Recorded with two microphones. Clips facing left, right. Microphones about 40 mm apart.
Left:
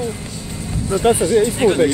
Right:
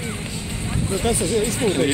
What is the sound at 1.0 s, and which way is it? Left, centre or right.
Speech, left.